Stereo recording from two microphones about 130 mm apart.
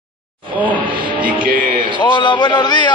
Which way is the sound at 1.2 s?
90° right.